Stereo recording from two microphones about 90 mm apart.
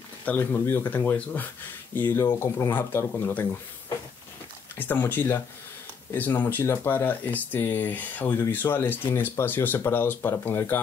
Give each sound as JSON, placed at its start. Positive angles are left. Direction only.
{"t": 0.2, "sound": "speech", "side_deg": 20}
{"t": 4.7, "sound": "speech", "side_deg": 20}